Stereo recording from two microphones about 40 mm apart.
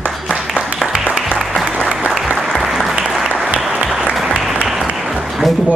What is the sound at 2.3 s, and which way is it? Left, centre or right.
Applause, centre.